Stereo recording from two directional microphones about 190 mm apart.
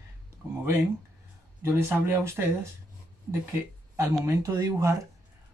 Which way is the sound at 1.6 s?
15° right (ahead or behind).